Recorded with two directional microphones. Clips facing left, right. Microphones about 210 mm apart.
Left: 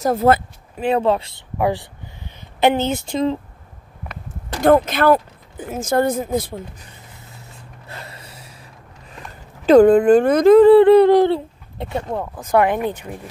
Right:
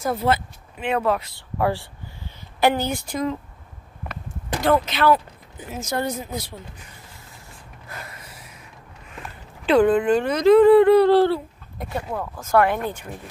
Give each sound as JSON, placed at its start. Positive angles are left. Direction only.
{"t": 0.0, "sound": "speech", "side_deg": 45}
{"t": 4.6, "sound": "speech", "side_deg": 50}
{"t": 7.9, "sound": "a sound", "side_deg": 30}
{"t": 9.7, "sound": "speech", "side_deg": 45}
{"t": 10.6, "sound": "speech", "side_deg": 30}